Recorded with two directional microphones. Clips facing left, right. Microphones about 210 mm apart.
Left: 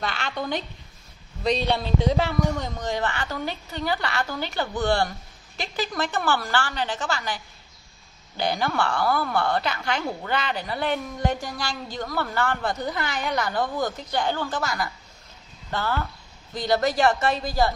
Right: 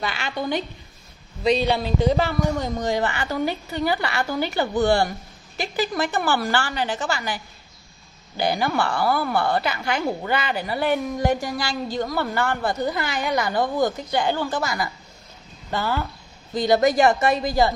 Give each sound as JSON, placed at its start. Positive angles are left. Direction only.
{"t": 0.0, "sound": "a woman's voice", "side_deg": -5}